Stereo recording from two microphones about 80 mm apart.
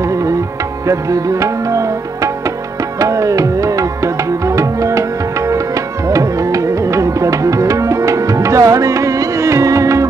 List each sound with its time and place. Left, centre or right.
0.0 s tabla: right
3.0 s music: right